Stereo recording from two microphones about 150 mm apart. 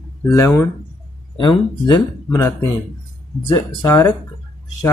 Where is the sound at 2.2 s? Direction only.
20° left (ahead or behind).